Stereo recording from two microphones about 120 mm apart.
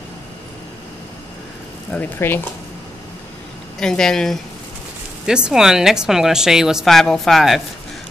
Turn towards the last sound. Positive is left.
turn(degrees=0)  # may be behind; listen again after turning